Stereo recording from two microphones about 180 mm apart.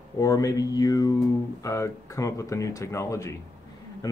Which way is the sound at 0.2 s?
20° left (ahead or behind).